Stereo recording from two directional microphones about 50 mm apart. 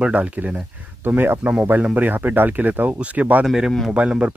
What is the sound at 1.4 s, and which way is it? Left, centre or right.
Speech, right.